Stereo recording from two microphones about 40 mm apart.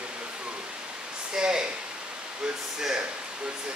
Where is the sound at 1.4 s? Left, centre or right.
Centre.